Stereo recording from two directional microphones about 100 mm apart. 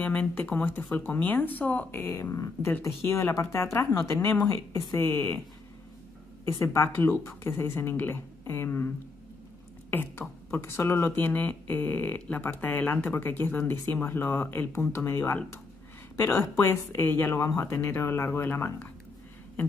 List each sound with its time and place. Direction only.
0.0 s speech: 15° left (ahead or behind)
6.4 s speech: 25° left (ahead or behind)